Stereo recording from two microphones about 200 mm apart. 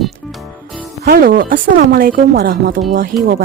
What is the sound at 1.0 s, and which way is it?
Speech, 45° right (ahead or behind).